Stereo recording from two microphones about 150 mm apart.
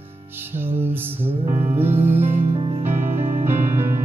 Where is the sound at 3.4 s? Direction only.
15° right (ahead or behind).